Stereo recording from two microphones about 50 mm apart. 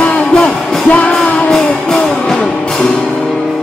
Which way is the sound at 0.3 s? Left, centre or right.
Centre.